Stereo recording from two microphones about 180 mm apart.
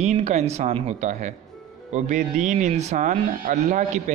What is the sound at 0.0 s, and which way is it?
Speech, 40° right (ahead or behind).